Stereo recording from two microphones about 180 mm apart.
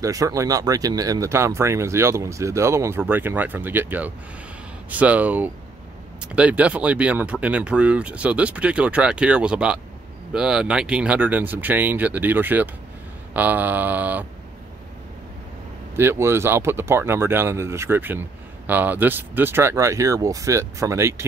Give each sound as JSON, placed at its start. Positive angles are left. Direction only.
{"t": 0.0, "sound": "speech", "side_deg": -20}
{"t": 16.0, "sound": "speech", "side_deg": -15}